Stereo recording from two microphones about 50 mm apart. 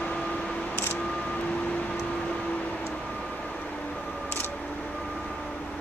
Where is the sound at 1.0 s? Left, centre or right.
Left.